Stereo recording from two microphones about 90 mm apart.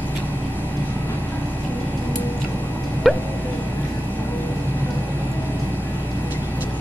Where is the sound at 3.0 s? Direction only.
Centre (ahead or behind).